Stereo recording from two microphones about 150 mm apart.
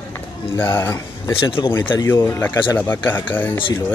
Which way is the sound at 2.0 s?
15° left (ahead or behind).